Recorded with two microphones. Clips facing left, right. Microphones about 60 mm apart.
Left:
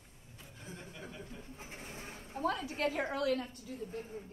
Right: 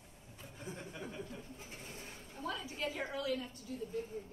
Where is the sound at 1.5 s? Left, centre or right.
Left.